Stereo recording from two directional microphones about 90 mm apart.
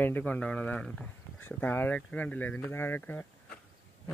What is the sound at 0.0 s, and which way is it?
Speech, 20° left (ahead or behind).